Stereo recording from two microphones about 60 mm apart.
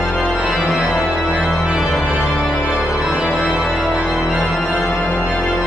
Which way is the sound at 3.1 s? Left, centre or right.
Centre.